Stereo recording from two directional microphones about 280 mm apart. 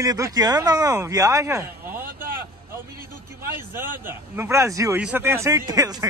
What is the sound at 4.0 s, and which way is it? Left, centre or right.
Speech, centre.